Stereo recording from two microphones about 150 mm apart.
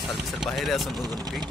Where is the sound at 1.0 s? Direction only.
25° right (ahead or behind).